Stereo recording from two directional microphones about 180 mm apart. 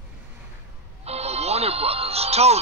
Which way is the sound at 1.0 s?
35° right (ahead or behind).